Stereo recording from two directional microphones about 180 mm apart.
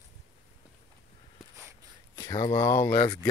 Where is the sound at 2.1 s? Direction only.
20° left (ahead or behind).